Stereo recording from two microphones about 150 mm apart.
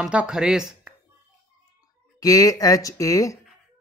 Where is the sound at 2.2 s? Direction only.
25° left (ahead or behind).